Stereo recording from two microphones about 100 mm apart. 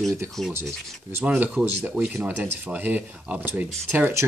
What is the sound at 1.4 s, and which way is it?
Speech, 15° right (ahead or behind).